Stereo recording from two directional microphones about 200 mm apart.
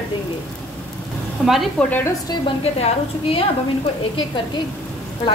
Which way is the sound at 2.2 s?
30° left (ahead or behind).